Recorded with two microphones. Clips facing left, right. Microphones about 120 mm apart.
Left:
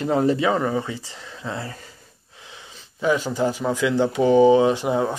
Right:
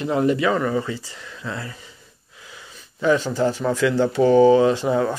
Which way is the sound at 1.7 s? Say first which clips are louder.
Left 2 dB; 45° left (ahead or behind).